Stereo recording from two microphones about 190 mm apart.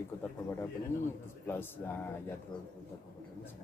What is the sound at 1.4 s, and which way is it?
Speech, 10° left (ahead or behind).